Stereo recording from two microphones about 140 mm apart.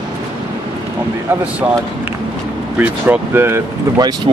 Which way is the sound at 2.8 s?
15° right (ahead or behind).